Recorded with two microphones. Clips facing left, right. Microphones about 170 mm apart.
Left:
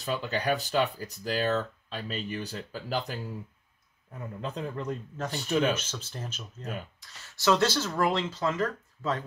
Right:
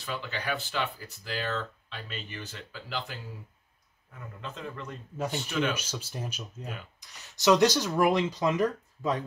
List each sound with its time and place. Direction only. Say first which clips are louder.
0.0 s speech: left 5 dB; 40° left (ahead or behind)
4.4 s speech: left 5 dB; 40° left (ahead or behind)
5.1 s speech: right 2 dB; 10° right (ahead or behind)
5.5 s speech: left 5 dB; 40° left (ahead or behind)
5.8 s speech: right 1 dB; 10° right (ahead or behind)